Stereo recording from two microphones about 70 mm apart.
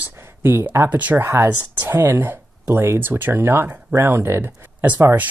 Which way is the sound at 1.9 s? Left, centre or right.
Right.